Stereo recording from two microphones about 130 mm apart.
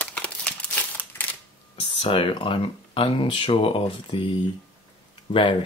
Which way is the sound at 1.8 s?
45° left (ahead or behind).